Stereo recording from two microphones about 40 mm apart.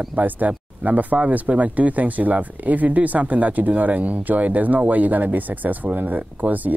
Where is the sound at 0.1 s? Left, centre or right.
Right.